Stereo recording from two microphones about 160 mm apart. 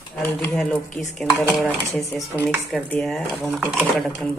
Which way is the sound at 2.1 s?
15° left (ahead or behind).